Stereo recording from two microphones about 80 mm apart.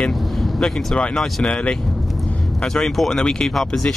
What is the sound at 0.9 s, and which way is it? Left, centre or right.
Speech, centre.